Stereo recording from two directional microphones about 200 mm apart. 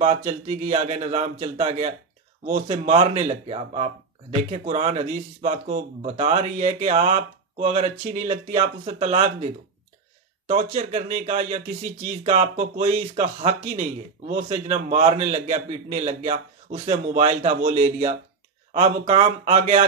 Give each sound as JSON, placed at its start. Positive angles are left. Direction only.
{"t": 0.0, "sound": "speech", "side_deg": -35}